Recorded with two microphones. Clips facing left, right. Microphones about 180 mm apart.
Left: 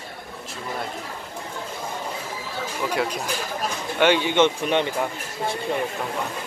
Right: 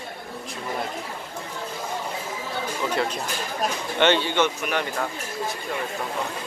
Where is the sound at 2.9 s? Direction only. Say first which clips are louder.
Left 1 dB; 10° left (ahead or behind).